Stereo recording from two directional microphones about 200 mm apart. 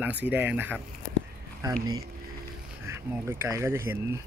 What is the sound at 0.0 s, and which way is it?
Speech, 10° right (ahead or behind).